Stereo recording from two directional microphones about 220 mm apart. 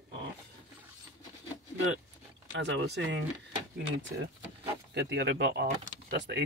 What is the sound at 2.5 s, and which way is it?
Speech, 55° right (ahead or behind).